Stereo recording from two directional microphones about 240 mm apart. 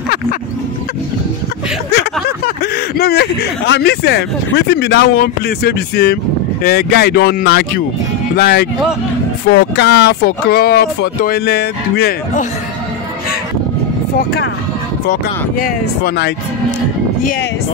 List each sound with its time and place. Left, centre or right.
2.2 s speech: left
15.6 s speech: left